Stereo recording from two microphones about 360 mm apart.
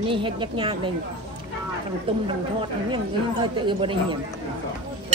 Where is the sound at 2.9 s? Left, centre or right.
Centre.